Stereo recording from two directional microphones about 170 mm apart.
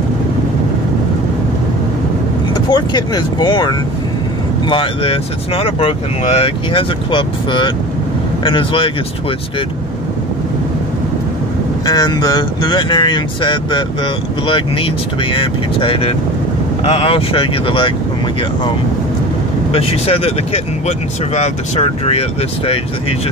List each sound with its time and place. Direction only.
2.5 s speech: 25° left (ahead or behind)
11.8 s speech: 25° left (ahead or behind)
15.3 s speech: 30° left (ahead or behind)
19.7 s speech: 35° left (ahead or behind)